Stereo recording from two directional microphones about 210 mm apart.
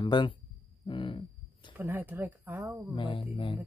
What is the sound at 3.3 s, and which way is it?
Speech, 25° left (ahead or behind).